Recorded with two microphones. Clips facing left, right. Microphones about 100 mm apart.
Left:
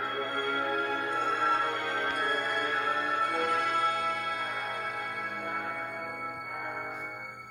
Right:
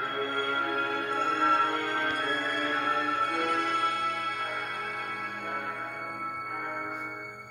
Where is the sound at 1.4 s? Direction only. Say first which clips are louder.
Right 3 dB; 55° right (ahead or behind).